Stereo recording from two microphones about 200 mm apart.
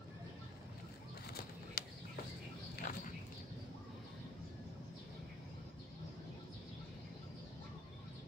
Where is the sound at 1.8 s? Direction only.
50° left (ahead or behind).